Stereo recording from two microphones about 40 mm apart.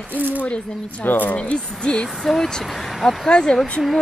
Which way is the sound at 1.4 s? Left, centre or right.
Left.